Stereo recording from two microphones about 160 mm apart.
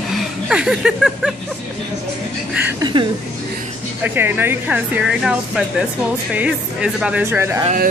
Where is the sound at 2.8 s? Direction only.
30° right (ahead or behind).